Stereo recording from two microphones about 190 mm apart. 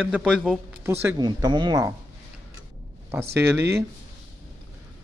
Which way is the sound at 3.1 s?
10° right (ahead or behind).